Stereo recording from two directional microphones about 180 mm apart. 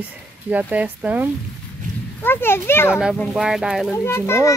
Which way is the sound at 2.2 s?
10° left (ahead or behind).